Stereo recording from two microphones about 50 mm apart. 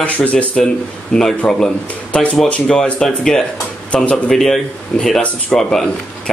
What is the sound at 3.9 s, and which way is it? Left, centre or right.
Speech, left.